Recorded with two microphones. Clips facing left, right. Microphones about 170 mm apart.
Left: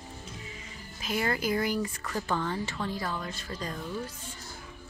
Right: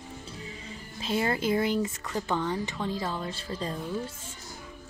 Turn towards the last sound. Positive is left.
turn(degrees=-25)  # may be behind; listen again after turning